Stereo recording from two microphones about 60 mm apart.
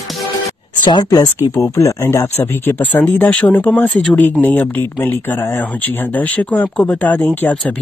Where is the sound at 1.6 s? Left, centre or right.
Left.